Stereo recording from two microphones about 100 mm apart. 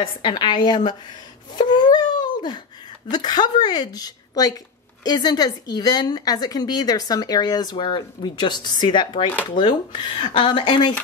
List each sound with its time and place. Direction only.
0.0 s a woman's voice: 50° left (ahead or behind)
1.5 s a sound: 45° left (ahead or behind)
3.1 s a woman's voice: 45° left (ahead or behind)